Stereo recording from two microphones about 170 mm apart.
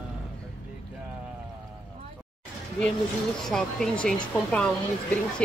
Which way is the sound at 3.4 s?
5° left (ahead or behind).